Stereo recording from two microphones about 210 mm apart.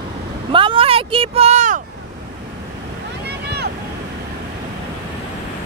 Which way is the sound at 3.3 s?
50° right (ahead or behind).